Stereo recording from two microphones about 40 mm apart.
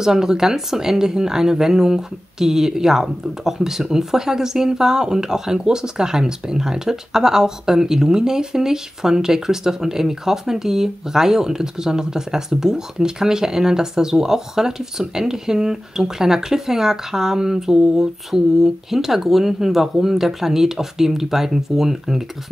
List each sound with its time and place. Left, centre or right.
0.0 s speech: centre